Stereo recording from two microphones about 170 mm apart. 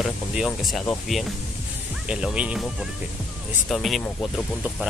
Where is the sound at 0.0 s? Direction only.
5° right (ahead or behind).